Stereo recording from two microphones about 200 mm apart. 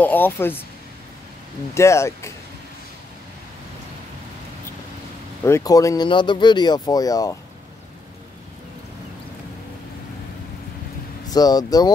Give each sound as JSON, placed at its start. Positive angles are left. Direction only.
{"t": 0.0, "sound": "speech", "side_deg": 10}
{"t": 1.7, "sound": "speech", "side_deg": 15}
{"t": 5.4, "sound": "speech", "side_deg": 15}
{"t": 11.2, "sound": "speech", "side_deg": 20}